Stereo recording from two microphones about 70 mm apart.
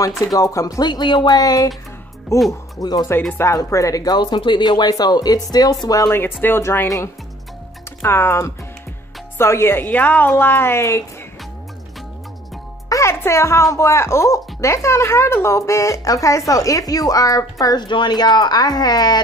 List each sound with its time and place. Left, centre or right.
0.3 s speech: left
2.3 s speech: left
2.8 s speech: left
3.5 s speech: left
5.9 s speech: left
6.1 s speech: left
8.0 s speech: left
9.8 s speech: left
12.9 s speech: left
17.7 s a woman's voice: left